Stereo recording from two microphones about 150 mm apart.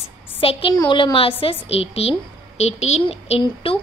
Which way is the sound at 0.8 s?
30° left (ahead or behind).